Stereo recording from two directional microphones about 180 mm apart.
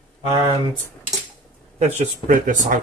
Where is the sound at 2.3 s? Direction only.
45° right (ahead or behind).